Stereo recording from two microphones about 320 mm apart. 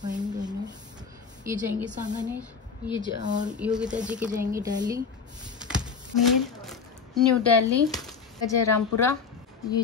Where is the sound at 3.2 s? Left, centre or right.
Right.